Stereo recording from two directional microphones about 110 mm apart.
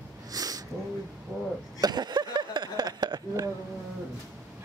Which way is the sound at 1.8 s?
40° right (ahead or behind).